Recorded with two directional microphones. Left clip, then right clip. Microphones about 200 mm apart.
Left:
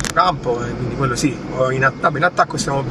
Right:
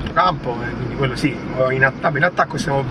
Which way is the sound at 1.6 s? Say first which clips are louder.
Even; 25° left (ahead or behind).